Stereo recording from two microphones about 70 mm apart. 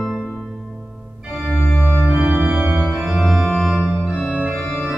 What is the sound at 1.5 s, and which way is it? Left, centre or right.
Organ, left.